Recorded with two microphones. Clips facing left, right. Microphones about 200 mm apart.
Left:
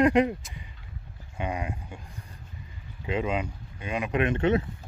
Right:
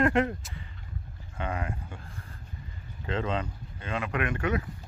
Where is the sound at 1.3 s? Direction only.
15° left (ahead or behind).